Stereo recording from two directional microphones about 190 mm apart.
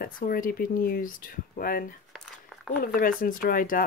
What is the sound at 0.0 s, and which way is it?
Speech, 50° left (ahead or behind).